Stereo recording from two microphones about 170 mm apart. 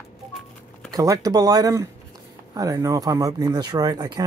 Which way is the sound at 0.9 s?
20° right (ahead or behind).